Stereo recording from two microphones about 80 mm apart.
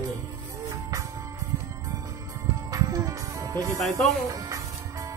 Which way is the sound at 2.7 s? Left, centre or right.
Right.